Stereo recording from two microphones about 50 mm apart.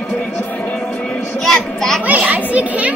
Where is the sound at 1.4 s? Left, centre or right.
Centre.